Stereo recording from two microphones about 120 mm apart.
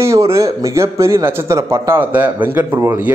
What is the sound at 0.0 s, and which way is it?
A man's voice, 25° right (ahead or behind).